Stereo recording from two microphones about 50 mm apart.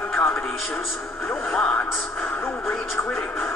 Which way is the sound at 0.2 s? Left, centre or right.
Left.